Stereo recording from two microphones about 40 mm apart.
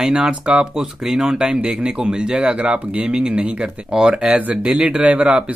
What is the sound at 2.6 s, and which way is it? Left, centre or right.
Speech, right.